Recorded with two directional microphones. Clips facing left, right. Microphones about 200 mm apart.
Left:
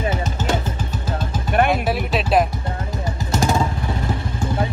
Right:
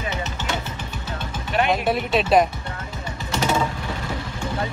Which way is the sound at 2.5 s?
40° left (ahead or behind).